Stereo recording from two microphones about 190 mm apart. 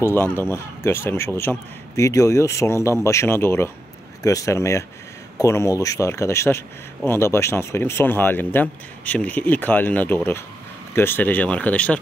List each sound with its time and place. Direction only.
0.0 s speech: 10° left (ahead or behind)